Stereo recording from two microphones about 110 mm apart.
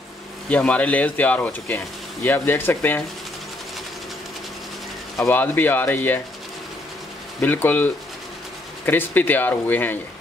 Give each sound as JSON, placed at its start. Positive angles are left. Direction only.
{"t": 0.5, "sound": "speech", "side_deg": 10}
{"t": 5.2, "sound": "speech", "side_deg": 20}
{"t": 7.4, "sound": "speech", "side_deg": 15}